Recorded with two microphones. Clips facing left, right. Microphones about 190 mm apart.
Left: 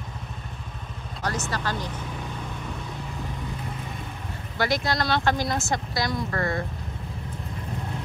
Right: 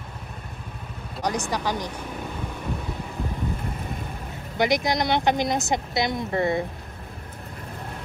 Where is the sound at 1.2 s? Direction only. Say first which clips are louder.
Right 3 dB; 15° right (ahead or behind).